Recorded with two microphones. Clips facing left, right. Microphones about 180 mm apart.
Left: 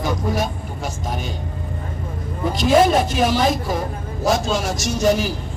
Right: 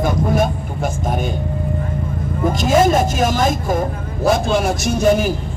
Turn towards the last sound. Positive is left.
turn(degrees=-55)  # may be behind; listen again after turning